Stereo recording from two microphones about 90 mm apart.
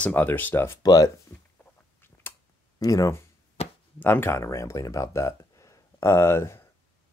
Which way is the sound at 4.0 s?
25° left (ahead or behind).